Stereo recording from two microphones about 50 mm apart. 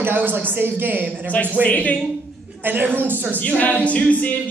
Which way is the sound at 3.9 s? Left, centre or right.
Left.